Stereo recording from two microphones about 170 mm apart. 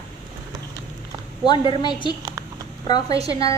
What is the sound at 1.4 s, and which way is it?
Speech, 25° left (ahead or behind).